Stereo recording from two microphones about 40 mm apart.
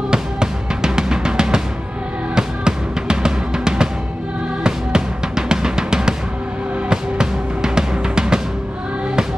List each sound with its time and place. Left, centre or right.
0.1 s drum: centre
2.3 s music: centre
4.6 s drum: centre
6.9 s music: centre